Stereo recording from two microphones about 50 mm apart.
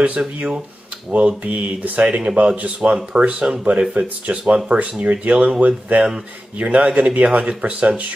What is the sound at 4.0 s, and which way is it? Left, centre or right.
Speech, right.